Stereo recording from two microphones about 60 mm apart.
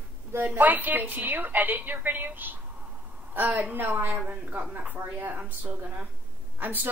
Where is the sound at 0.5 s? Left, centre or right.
Right.